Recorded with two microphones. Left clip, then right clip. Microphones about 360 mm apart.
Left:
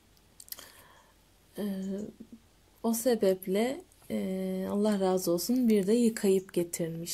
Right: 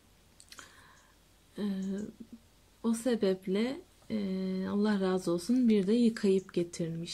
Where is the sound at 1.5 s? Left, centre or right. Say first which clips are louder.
Left 1 dB; centre.